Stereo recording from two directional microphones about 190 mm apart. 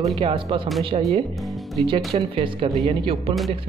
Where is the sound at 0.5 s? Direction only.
25° right (ahead or behind).